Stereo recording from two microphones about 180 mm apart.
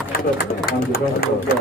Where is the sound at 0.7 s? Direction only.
55° left (ahead or behind).